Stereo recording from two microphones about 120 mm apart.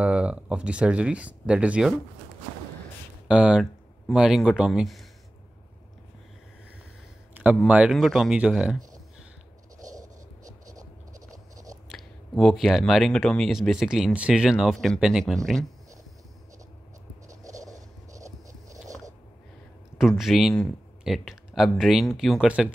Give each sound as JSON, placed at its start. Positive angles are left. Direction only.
{"t": 0.0, "sound": "speech", "side_deg": -10}
{"t": 3.3, "sound": "speech", "side_deg": -10}
{"t": 7.6, "sound": "speech", "side_deg": -10}
{"t": 9.8, "sound": "writing", "side_deg": -30}
{"t": 10.7, "sound": "scratch", "side_deg": -30}
{"t": 11.9, "sound": "speech", "side_deg": 0}
{"t": 17.3, "sound": "a sound", "side_deg": -30}
{"t": 20.0, "sound": "speech", "side_deg": 0}